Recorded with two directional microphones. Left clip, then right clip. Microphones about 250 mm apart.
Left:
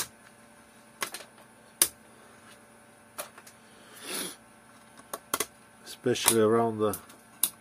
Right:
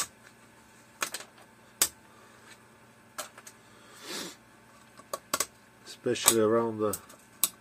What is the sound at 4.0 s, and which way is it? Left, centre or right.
Cat, left.